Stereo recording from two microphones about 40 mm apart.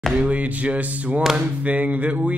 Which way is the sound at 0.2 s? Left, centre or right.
Right.